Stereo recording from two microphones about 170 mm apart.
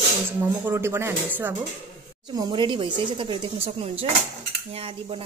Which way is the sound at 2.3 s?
25° right (ahead or behind).